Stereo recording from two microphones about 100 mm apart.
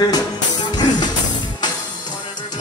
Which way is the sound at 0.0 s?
45° left (ahead or behind).